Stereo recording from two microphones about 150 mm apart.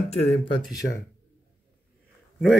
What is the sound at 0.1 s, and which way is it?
Speech, 45° left (ahead or behind).